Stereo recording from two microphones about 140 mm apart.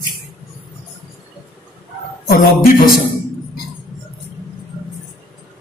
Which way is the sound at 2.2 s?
90° left.